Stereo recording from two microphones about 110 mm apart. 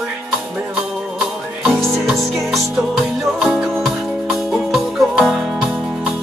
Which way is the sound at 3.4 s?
5° right (ahead or behind).